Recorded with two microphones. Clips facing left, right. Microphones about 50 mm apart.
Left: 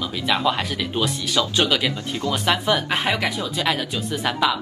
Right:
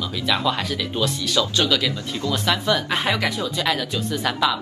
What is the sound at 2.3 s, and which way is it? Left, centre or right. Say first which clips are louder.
Speech: left 1 dB; centre.